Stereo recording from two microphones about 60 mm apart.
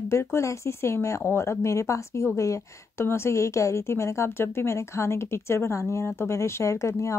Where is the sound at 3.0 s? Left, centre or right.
Left.